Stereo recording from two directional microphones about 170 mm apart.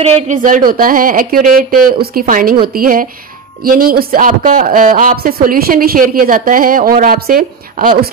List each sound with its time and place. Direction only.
0.0 s speech: 40° right (ahead or behind)